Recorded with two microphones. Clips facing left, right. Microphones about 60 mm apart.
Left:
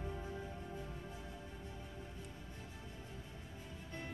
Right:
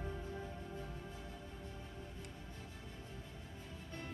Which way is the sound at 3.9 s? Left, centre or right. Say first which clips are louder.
Left 1 dB; left.